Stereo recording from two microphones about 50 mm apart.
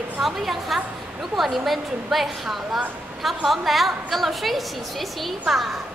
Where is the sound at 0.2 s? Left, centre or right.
Centre.